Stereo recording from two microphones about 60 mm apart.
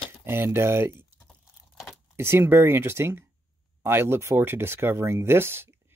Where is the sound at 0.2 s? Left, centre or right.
Right.